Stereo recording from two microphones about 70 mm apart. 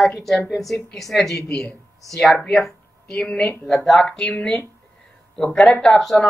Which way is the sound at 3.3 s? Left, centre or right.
Centre.